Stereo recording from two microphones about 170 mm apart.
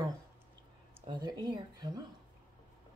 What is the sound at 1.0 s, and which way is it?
Speech, 25° right (ahead or behind).